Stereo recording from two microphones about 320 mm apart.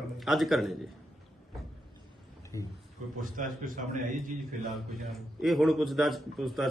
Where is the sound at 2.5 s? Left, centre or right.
Centre.